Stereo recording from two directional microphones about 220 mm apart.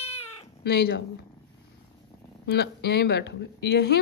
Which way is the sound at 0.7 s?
45° left (ahead or behind).